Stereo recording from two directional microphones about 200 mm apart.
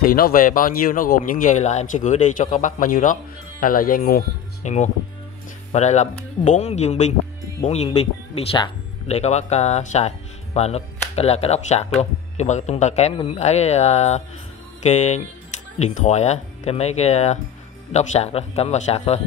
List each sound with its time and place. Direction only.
0.0 s speech: 45° left (ahead or behind)